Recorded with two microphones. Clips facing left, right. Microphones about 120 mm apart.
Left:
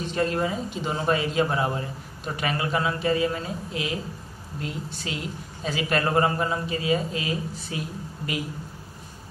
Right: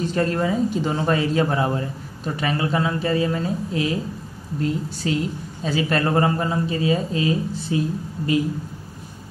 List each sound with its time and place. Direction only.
0.0 s a man's voice: 40° right (ahead or behind)